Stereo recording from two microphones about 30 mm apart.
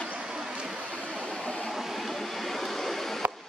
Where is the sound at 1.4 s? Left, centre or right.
Left.